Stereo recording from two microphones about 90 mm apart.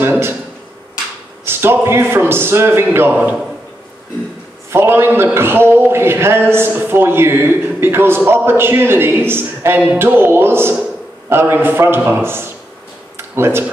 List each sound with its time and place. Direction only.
0.0 s a sound: 25° right (ahead or behind)
1.4 s a man's voice: 25° right (ahead or behind)
3.1 s a man's voice: 15° right (ahead or behind)
4.6 s a man's voice: 25° right (ahead or behind)